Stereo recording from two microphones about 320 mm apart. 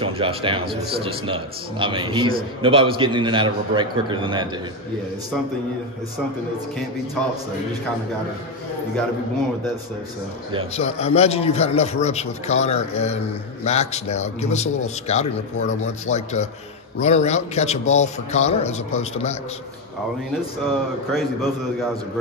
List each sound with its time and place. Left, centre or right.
0.0 s a man's voice: centre
10.8 s a man's voice: centre
21.1 s a man's voice: centre